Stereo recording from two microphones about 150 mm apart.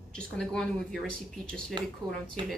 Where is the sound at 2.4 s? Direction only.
30° right (ahead or behind).